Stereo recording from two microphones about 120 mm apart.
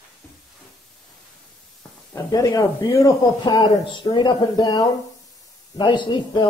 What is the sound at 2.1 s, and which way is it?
Speech, 25° left (ahead or behind).